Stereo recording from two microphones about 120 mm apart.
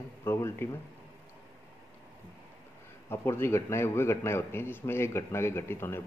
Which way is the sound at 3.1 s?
20° left (ahead or behind).